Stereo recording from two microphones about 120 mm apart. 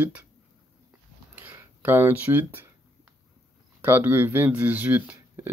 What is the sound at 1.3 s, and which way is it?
Speech, 15° right (ahead or behind).